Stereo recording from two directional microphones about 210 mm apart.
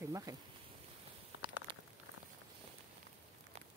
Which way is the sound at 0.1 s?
15° right (ahead or behind).